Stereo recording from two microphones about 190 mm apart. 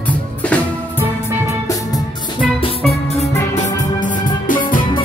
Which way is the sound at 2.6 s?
30° left (ahead or behind).